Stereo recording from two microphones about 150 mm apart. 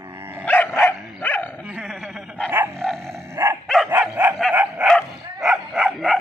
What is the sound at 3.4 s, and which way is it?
Dog, 25° right (ahead or behind).